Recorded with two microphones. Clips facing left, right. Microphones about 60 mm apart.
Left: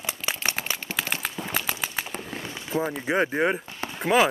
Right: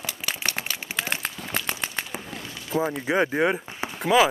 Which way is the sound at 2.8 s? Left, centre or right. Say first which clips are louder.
Right 1 dB; centre.